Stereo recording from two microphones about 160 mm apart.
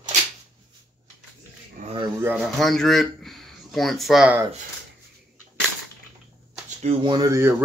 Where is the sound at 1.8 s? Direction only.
55° right (ahead or behind).